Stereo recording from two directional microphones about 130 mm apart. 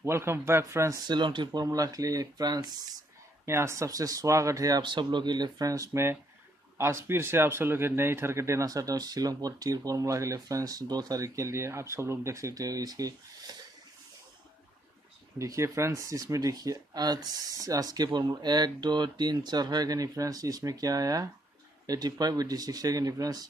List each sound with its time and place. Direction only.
0.0 s speech: 20° right (ahead or behind)
1.0 s speech: 35° right (ahead or behind)
15.3 s speech: 25° right (ahead or behind)